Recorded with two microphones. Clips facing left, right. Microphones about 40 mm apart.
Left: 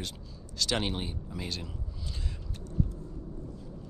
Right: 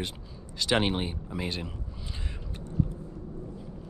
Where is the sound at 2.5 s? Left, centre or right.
Right.